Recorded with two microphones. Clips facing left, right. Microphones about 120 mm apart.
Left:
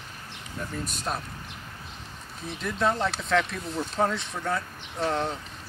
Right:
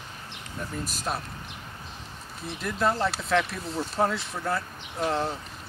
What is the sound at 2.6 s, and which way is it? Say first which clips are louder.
Speech: even; 5° right (ahead or behind).